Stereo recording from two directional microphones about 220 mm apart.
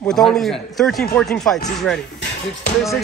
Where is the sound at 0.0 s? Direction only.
Centre (ahead or behind).